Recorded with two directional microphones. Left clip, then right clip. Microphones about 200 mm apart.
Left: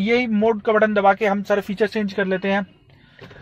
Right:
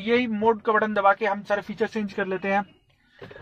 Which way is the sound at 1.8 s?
45° left (ahead or behind).